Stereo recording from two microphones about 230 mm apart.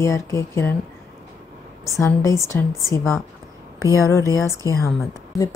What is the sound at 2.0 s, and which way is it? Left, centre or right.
Speech, centre.